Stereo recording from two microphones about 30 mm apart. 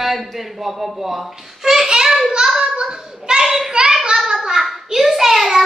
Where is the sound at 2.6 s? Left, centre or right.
Right.